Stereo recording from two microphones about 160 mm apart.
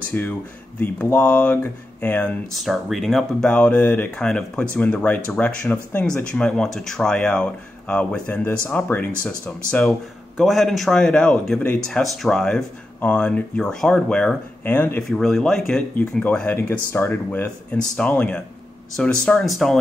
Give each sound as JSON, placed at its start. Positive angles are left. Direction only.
{"t": 0.1, "sound": "speech", "side_deg": 10}
{"t": 10.3, "sound": "speech", "side_deg": 0}
{"t": 15.0, "sound": "speech", "side_deg": 0}